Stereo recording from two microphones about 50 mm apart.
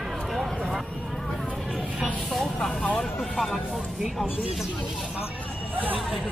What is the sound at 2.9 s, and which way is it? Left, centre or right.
Music, centre.